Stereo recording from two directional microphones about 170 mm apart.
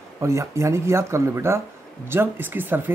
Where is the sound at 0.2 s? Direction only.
15° right (ahead or behind).